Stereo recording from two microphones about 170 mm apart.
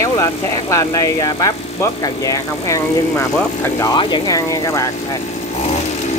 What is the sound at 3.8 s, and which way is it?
Speech, 25° left (ahead or behind).